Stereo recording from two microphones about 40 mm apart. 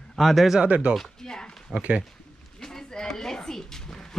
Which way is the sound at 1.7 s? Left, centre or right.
Right.